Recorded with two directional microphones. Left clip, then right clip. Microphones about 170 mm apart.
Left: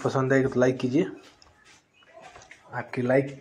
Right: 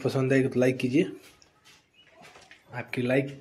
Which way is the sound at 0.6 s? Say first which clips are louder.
Left 1 dB; 20° right (ahead or behind).